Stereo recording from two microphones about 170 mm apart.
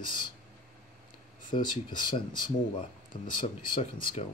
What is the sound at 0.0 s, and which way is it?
Speech, 30° left (ahead or behind).